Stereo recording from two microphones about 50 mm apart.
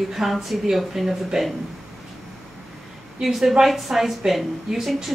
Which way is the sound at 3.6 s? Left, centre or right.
Centre.